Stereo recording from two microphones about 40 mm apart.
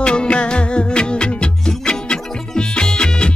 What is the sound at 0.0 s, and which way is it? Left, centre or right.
Music, left.